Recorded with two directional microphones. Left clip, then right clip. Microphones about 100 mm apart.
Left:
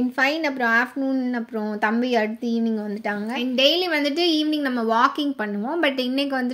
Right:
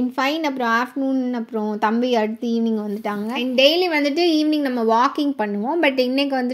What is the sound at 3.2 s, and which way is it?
A woman's voice, 35° right (ahead or behind).